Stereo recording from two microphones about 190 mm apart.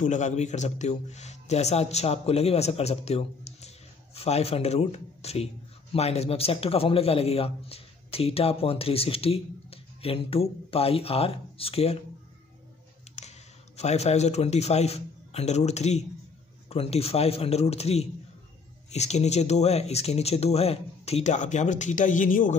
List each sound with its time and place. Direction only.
0.0 s a man's voice: 40° left (ahead or behind)
13.1 s a sound: 35° left (ahead or behind)
13.7 s a man's voice: 35° left (ahead or behind)